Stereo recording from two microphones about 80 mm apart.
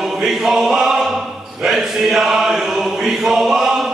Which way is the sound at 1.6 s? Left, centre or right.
Centre.